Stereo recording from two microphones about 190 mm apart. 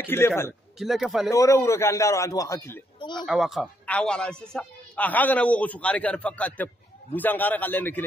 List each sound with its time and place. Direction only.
0.0 s a man's voice: 10° left (ahead or behind)
0.7 s a man's voice: centre (ahead or behind)
1.3 s speech: 15° left (ahead or behind)
3.2 s speech: centre (ahead or behind)